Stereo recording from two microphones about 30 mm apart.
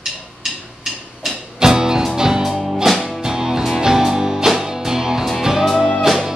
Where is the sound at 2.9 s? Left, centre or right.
Centre.